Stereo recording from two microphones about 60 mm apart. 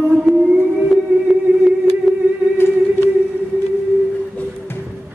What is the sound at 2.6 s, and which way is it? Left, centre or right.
Music, left.